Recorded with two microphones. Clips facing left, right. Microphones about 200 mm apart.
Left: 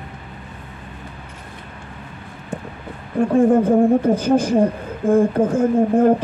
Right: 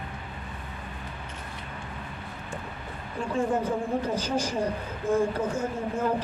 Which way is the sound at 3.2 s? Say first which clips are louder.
Left 13 dB; 55° left (ahead or behind).